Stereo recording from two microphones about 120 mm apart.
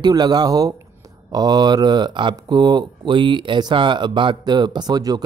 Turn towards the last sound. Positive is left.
turn(degrees=-30)  # may be behind; listen again after turning